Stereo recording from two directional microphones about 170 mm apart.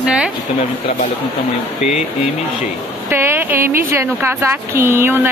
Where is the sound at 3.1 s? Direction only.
15° right (ahead or behind).